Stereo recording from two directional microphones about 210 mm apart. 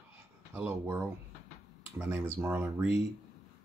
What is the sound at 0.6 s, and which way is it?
Speech, 5° right (ahead or behind).